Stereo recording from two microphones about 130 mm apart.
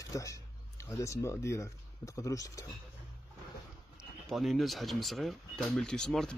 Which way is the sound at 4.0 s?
Centre (ahead or behind).